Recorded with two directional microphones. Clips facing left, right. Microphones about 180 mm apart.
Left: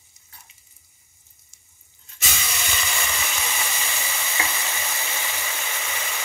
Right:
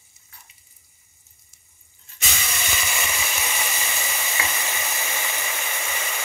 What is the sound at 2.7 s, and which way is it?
Frying, 10° right (ahead or behind).